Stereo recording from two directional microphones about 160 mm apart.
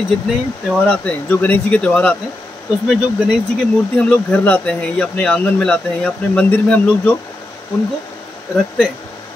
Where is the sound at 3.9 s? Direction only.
10° left (ahead or behind).